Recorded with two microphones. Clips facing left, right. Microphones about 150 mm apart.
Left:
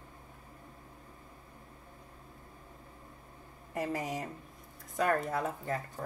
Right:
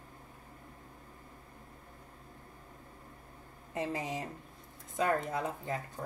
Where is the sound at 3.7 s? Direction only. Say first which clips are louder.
Left 1 dB; 25° right (ahead or behind).